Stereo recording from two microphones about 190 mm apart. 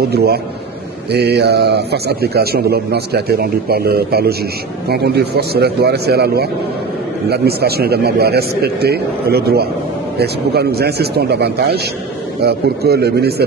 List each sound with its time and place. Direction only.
0.1 s a man's voice: 55° right (ahead or behind)